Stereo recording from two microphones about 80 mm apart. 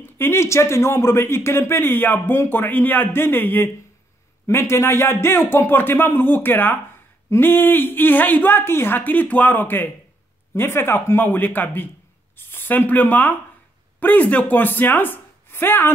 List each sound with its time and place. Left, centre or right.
0.0 s speech: left